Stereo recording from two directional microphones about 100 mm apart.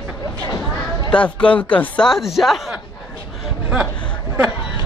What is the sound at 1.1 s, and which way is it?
Speech, 10° left (ahead or behind).